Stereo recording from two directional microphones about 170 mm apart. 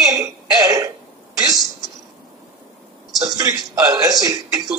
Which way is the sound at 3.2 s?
20° right (ahead or behind).